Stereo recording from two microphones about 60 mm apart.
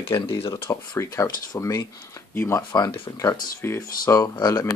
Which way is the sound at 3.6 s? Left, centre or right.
Left.